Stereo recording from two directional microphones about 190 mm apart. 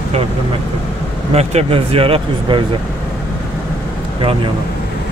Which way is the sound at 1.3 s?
35° right (ahead or behind).